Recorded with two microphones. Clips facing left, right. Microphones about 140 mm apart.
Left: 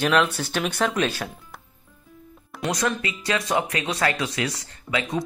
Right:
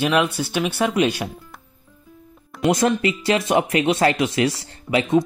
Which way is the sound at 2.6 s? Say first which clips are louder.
Right 7 dB; 25° right (ahead or behind).